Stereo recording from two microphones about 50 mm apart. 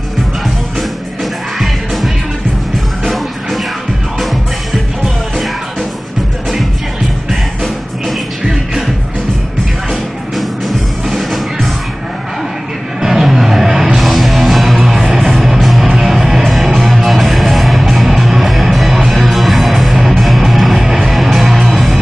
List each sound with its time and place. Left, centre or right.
11.1 s music: centre
13.0 s music: centre
14.8 s music: centre
15.3 s music: centre